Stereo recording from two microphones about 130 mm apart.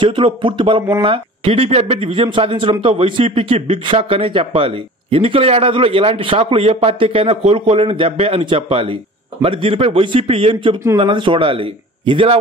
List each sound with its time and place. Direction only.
0.0 s a man's voice: 40° right (ahead or behind)